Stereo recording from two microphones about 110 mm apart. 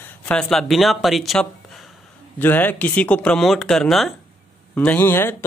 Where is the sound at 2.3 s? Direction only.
15° left (ahead or behind).